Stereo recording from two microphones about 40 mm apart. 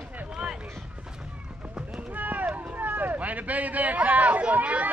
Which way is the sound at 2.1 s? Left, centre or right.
Right.